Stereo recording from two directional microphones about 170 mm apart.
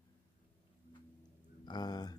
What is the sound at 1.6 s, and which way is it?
Speech, 25° left (ahead or behind).